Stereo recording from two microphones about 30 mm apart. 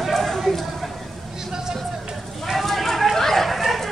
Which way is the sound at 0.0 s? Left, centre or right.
Centre.